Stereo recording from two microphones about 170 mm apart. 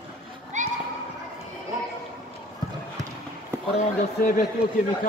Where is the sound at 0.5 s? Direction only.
45° right (ahead or behind).